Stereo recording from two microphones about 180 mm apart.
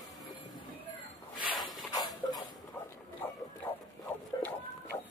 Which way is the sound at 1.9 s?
20° left (ahead or behind).